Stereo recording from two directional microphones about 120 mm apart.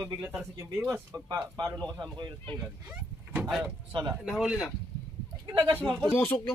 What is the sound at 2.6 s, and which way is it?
Door, 10° right (ahead or behind).